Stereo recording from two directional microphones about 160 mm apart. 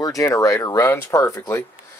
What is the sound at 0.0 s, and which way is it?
Speech, 20° left (ahead or behind).